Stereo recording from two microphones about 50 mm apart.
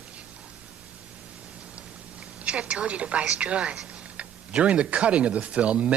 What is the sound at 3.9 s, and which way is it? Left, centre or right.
Speech, right.